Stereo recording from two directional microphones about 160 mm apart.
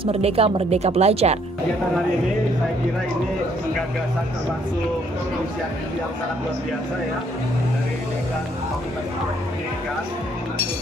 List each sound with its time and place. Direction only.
0.0 s speech: 40° right (ahead or behind)